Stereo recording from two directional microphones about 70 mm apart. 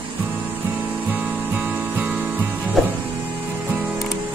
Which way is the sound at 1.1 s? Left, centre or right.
Right.